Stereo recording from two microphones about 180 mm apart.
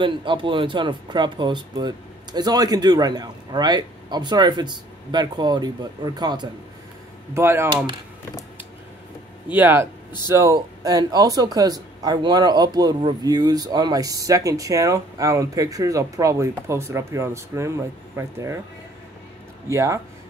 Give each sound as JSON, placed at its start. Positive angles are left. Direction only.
{"t": 0.0, "sound": "speech", "side_deg": -25}
{"t": 9.5, "sound": "speech", "side_deg": -10}
{"t": 19.7, "sound": "speech", "side_deg": -15}